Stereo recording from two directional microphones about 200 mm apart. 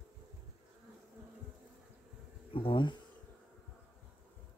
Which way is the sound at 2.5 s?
25° left (ahead or behind).